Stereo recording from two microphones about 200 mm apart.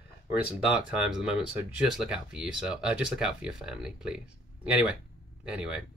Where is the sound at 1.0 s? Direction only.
5° right (ahead or behind).